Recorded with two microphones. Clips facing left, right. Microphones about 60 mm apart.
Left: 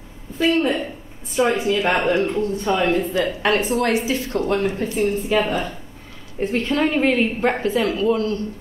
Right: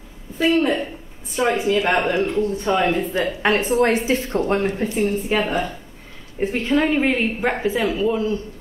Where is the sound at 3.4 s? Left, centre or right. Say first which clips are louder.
Right 4 dB; right.